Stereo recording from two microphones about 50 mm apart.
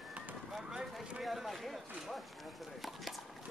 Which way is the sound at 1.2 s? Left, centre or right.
Centre.